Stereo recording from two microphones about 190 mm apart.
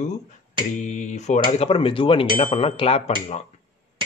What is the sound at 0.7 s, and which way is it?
Speech, 40° left (ahead or behind).